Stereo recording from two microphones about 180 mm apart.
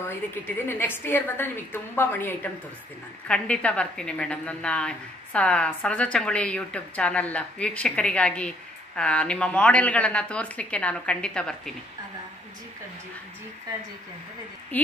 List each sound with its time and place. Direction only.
0.1 s a woman's voice: 10° left (ahead or behind)
14.7 s a woman's voice: 10° left (ahead or behind)